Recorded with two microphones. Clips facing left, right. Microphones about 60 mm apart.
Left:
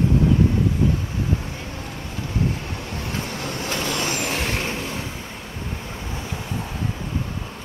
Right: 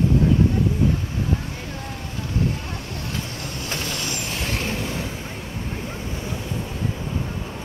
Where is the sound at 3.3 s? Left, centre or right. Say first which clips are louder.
Left 3 dB; left.